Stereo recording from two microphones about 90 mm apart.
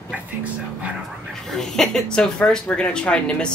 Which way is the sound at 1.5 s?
5° left (ahead or behind).